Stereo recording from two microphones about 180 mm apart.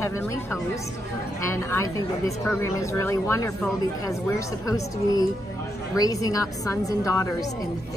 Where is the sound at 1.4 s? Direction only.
15° left (ahead or behind).